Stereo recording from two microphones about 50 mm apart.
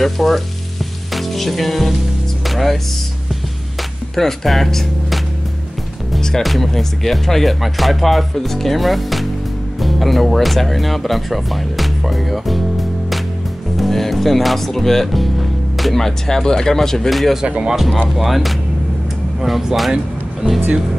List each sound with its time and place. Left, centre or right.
0.0 s speech: centre
1.1 s music: centre
2.4 s speech: centre
4.1 s speech: centre
6.4 s speech: centre
17.5 s speech: centre
18.1 s speech: centre